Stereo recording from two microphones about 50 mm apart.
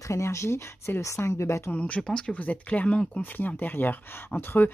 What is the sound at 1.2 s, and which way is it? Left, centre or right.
Speech, left.